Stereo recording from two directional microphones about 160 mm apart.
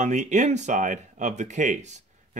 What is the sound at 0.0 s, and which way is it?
Speech, 50° right (ahead or behind).